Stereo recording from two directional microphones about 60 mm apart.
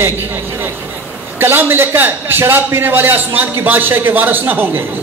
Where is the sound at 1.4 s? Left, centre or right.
Right.